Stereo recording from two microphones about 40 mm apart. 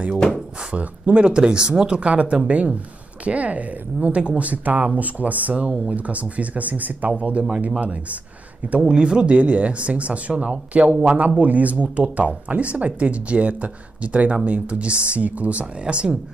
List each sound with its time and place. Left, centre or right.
0.7 s speech: right
7.2 s speech: right
8.9 s speech: right